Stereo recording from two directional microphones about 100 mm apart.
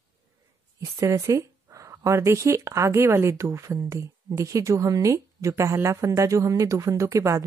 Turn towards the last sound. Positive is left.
turn(degrees=-30)  # may be behind; listen again after turning